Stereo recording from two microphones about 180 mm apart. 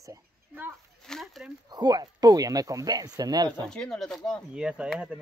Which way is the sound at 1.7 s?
20° right (ahead or behind).